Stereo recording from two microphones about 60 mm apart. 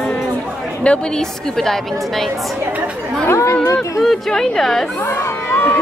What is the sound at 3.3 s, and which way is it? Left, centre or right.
Chatter, left.